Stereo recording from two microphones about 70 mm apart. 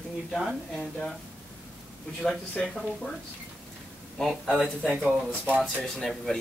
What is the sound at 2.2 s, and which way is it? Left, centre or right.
Speech, centre.